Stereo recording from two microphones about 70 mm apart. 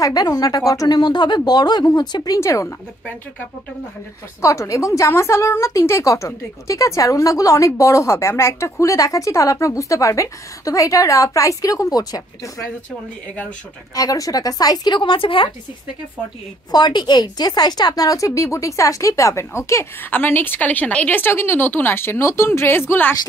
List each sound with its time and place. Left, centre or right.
0.0 s speech: left
1.9 s a woman's voice: left
2.4 s a woman's voice: left
4.4 s a woman's voice: left
13.9 s a woman's voice: left
16.7 s a woman's voice: left
20.0 s a woman's voice: left